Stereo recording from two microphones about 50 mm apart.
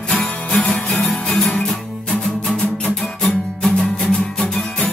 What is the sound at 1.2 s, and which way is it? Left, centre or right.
Music, centre.